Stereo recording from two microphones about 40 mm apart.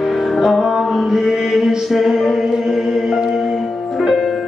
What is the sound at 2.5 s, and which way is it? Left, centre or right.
Chant, centre.